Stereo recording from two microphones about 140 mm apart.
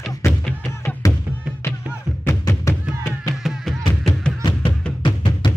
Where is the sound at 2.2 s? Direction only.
20° left (ahead or behind).